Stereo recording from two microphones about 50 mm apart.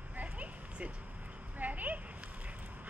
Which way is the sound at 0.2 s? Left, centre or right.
Right.